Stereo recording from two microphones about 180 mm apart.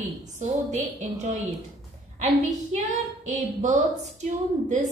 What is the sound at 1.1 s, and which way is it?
A woman's voice, 40° right (ahead or behind).